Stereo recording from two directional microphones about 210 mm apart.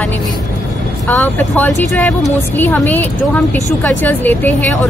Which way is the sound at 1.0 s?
10° left (ahead or behind).